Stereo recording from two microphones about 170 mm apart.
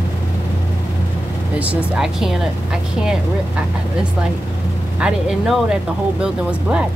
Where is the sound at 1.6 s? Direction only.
5° right (ahead or behind).